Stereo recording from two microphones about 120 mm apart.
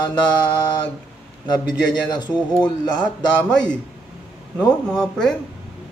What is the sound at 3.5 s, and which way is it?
Speech, 5° left (ahead or behind).